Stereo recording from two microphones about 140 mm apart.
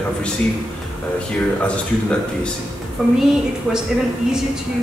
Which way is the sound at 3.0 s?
Centre (ahead or behind).